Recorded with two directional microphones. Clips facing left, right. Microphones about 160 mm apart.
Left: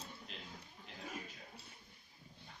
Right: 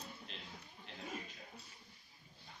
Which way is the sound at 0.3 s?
5° left (ahead or behind).